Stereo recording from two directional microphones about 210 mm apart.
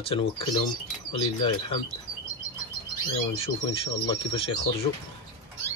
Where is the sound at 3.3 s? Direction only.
25° left (ahead or behind).